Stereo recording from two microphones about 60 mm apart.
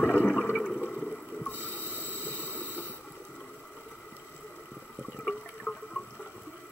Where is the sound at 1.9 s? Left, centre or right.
Left.